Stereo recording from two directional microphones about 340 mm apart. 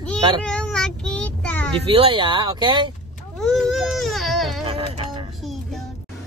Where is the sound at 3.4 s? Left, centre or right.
Centre.